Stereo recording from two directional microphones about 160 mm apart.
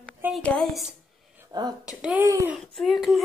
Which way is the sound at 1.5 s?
25° right (ahead or behind).